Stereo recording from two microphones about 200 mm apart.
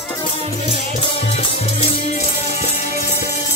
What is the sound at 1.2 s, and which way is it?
Music, 30° left (ahead or behind).